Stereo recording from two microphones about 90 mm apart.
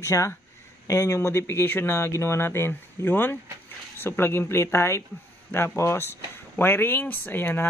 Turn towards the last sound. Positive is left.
turn(degrees=20)  # may be behind; listen again after turning